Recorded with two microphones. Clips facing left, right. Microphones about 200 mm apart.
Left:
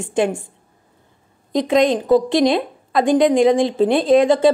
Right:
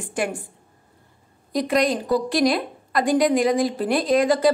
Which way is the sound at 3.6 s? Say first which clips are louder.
Left 5 dB; 25° left (ahead or behind).